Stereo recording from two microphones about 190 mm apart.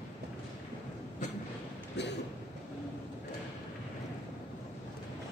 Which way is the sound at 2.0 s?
65° left (ahead or behind).